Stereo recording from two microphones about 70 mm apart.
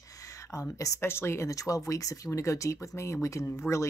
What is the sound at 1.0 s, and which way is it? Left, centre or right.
Speech, left.